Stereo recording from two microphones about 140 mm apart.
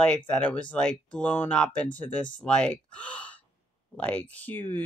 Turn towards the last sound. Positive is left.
turn(degrees=15)  # may be behind; listen again after turning